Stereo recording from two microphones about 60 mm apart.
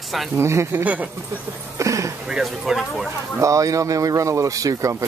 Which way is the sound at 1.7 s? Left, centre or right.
Right.